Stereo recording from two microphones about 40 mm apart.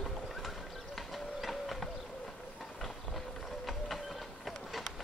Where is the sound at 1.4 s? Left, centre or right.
Centre.